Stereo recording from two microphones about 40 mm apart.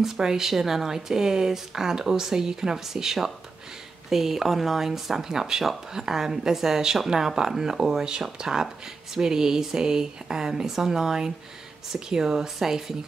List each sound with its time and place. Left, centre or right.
0.0 s speech: centre